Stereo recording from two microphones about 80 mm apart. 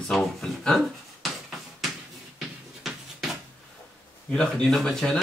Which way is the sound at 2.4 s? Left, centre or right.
Centre.